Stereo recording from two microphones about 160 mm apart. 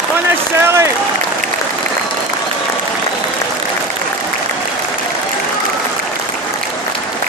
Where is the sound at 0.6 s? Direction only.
15° right (ahead or behind).